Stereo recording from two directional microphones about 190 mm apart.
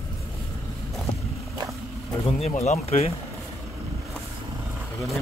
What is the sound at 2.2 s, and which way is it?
Speech, 35° left (ahead or behind).